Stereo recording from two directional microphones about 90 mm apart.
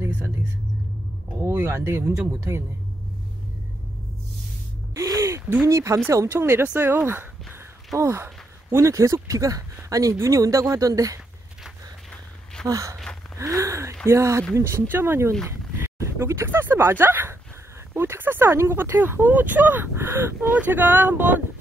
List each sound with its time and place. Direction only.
1.5 s speech: 30° right (ahead or behind)
4.9 s a sound: 35° right (ahead or behind)
5.7 s speech: 30° right (ahead or behind)
12.6 s speech: 40° right (ahead or behind)
13.4 s gasp: 35° right (ahead or behind)
14.0 s speech: 30° right (ahead or behind)